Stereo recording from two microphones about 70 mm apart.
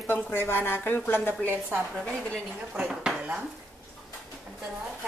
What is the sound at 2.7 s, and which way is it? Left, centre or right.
Speech, centre.